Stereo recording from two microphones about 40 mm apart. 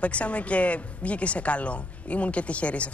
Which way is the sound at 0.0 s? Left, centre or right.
Left.